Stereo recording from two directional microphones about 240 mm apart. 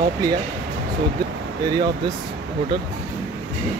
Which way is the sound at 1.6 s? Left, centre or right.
Centre.